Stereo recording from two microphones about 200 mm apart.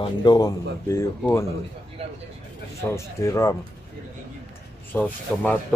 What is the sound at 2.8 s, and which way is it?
Speech, 15° left (ahead or behind).